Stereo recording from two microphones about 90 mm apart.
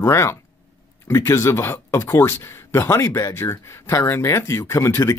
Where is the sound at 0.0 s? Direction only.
30° left (ahead or behind).